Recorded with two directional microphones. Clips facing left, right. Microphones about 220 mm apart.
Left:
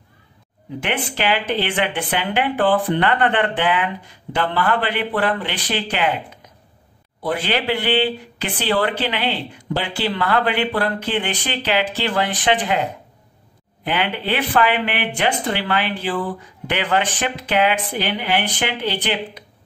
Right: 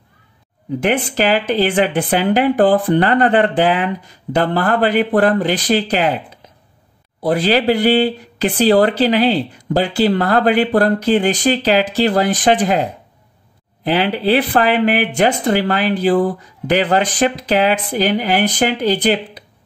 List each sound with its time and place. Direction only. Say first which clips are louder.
0.7 s speech: right 7 dB; 40° right (ahead or behind)
13.8 s speech: right 7 dB; 35° right (ahead or behind)